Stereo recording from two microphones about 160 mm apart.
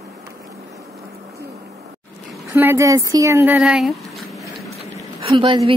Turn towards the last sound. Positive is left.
turn(degrees=-35)  # may be behind; listen again after turning